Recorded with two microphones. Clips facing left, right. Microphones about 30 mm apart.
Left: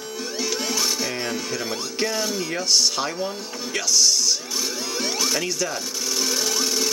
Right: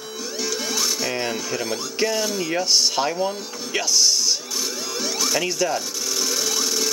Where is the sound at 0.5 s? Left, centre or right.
Left.